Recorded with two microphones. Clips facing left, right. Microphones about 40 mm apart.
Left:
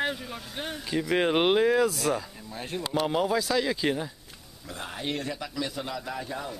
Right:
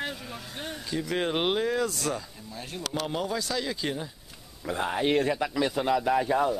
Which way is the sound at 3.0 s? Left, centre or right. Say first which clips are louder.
Left 6 dB; centre.